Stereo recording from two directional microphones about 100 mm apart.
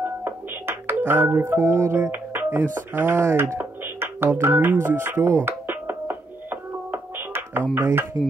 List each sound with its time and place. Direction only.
0.0 s music: 20° right (ahead or behind)
7.7 s speech: 20° right (ahead or behind)